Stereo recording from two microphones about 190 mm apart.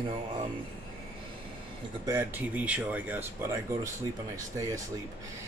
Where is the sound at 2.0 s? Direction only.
15° right (ahead or behind).